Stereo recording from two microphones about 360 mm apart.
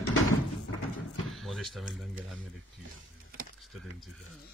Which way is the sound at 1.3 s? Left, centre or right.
Centre.